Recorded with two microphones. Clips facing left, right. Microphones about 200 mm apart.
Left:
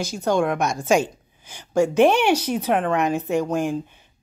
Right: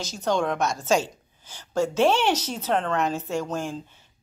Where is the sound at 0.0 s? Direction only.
10° left (ahead or behind).